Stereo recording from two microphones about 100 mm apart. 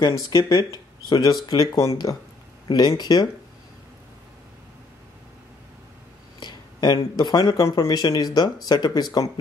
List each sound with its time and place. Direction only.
0.5 s speech: 40° left (ahead or behind)
6.4 s a sound: 45° left (ahead or behind)
7.0 s speech: 50° left (ahead or behind)